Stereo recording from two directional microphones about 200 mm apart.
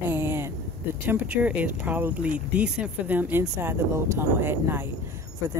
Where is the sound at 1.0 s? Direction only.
10° right (ahead or behind).